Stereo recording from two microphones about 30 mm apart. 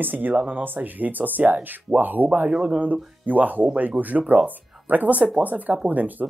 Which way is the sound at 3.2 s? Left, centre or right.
Right.